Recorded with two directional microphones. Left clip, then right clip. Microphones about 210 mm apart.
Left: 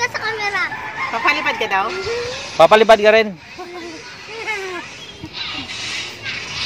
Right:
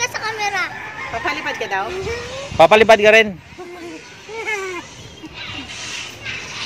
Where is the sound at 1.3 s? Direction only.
50° left (ahead or behind).